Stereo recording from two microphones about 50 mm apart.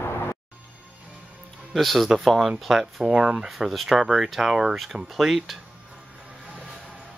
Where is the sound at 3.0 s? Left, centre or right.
Centre.